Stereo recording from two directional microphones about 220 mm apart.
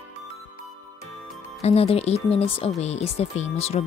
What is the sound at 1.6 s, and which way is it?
Speech, 30° left (ahead or behind).